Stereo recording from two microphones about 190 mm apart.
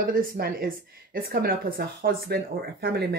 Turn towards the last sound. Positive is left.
turn(degrees=-55)  # may be behind; listen again after turning